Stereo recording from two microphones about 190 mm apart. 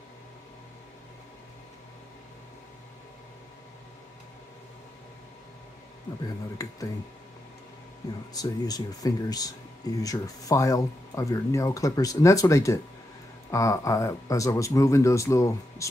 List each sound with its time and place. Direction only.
6.6 s speech: 15° left (ahead or behind)
8.3 s speech: 20° left (ahead or behind)